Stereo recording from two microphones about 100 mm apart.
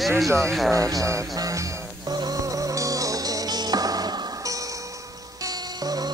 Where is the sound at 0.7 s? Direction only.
35° right (ahead or behind).